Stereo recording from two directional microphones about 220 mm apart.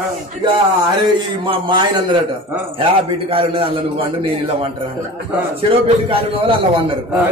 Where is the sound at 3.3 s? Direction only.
25° right (ahead or behind).